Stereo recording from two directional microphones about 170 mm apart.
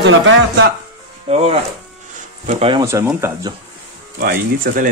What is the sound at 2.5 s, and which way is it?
Speech, 35° right (ahead or behind).